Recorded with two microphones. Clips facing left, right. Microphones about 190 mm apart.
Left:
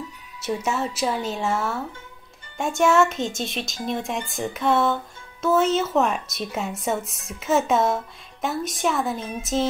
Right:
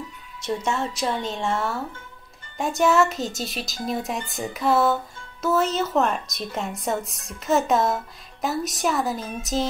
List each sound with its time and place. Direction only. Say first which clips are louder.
0.4 s speech: even; 5° left (ahead or behind)